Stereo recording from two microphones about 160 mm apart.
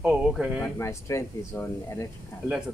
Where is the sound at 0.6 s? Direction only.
15° left (ahead or behind).